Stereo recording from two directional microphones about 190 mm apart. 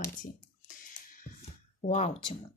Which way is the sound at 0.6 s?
45° left (ahead or behind).